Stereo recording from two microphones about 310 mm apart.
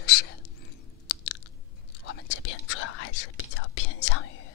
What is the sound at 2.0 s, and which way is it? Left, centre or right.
Whispering, left.